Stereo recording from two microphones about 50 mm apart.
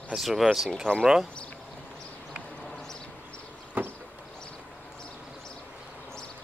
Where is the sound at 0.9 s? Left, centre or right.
Centre.